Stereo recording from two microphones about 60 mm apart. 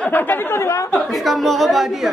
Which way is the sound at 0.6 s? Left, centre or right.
Left.